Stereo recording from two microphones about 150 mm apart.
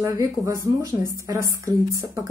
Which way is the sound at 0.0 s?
20° right (ahead or behind).